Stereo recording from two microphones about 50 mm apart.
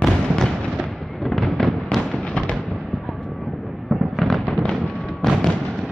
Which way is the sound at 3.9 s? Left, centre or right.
Centre.